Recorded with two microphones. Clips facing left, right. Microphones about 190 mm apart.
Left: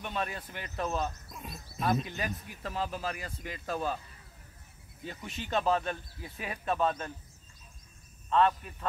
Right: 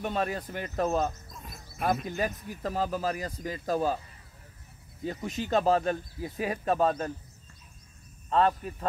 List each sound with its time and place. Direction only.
0.0 s speech: 40° right (ahead or behind)
5.0 s speech: 40° right (ahead or behind)
8.3 s speech: 35° right (ahead or behind)